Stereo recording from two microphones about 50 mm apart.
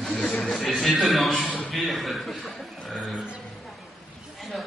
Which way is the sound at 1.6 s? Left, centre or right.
Centre.